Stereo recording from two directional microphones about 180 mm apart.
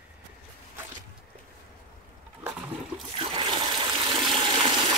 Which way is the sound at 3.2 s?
30° right (ahead or behind).